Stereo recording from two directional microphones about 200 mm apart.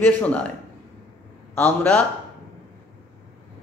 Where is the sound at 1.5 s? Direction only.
5° left (ahead or behind).